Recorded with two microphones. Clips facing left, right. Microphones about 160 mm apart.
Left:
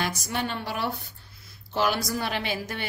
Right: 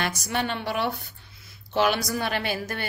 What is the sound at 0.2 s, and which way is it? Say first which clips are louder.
Speech: right 2 dB; 65° right (ahead or behind).